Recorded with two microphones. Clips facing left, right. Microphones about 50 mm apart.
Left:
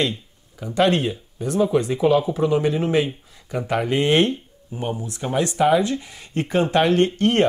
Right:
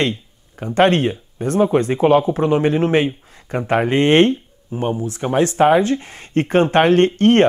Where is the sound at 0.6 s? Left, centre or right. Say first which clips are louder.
Right 4 dB; right.